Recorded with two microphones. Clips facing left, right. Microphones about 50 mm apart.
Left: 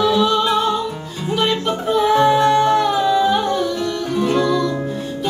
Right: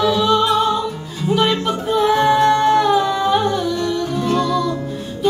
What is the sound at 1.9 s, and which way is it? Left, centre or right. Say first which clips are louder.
Music: left 1 dB; centre.